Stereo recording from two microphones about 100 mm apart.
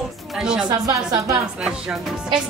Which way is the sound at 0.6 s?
40° right (ahead or behind).